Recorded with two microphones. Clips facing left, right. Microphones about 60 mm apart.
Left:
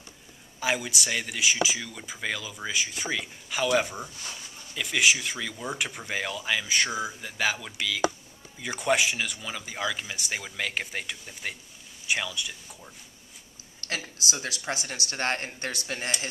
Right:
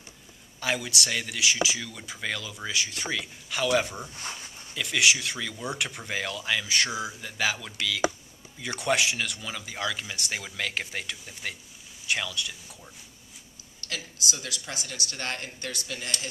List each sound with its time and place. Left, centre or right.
0.6 s speech: centre
4.1 s speech: right
4.7 s speech: centre
13.8 s speech: left